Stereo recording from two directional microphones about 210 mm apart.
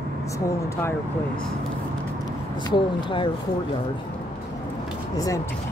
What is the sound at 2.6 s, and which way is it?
Speech, 20° left (ahead or behind).